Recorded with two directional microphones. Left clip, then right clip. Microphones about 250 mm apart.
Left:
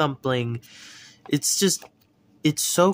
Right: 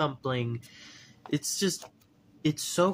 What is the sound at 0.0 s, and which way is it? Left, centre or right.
Speech, left.